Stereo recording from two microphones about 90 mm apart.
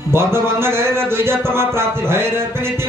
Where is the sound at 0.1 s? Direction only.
25° right (ahead or behind).